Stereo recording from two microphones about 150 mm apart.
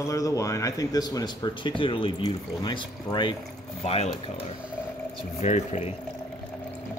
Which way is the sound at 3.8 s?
45° left (ahead or behind).